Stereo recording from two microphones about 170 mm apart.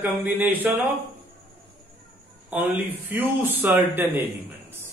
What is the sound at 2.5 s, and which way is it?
A man's voice, 10° right (ahead or behind).